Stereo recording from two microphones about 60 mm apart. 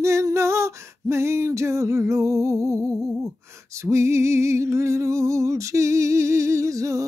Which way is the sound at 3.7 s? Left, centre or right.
Right.